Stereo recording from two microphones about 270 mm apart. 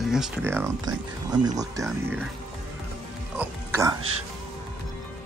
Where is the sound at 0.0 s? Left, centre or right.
Centre.